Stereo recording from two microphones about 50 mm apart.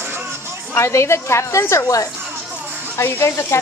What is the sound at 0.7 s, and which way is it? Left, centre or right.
A woman's voice, left.